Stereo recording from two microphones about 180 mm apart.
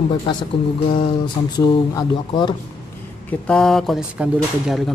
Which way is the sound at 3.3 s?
5° left (ahead or behind).